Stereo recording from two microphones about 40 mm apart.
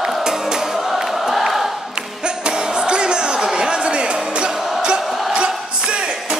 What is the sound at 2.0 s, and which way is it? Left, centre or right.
Music, right.